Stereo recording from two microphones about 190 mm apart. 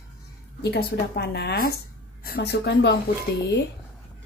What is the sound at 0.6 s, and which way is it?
A woman's voice, 60° left (ahead or behind).